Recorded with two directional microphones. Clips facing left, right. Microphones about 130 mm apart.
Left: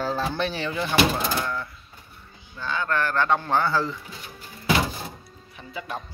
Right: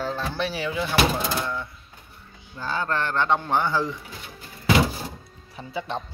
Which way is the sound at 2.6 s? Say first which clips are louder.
Even; 35° right (ahead or behind).